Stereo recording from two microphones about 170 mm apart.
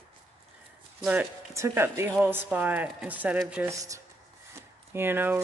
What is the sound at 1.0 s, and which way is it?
Speech, 10° right (ahead or behind).